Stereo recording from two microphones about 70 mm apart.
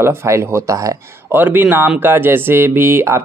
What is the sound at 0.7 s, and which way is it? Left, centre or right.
Speech, right.